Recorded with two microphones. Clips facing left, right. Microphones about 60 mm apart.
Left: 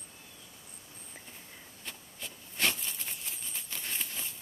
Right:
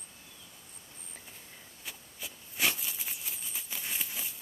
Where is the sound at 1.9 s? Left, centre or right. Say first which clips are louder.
Even; centre.